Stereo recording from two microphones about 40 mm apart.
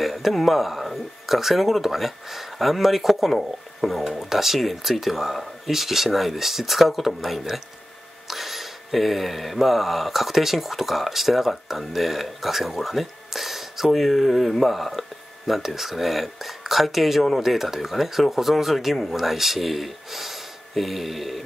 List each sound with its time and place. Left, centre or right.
0.0 s speech: centre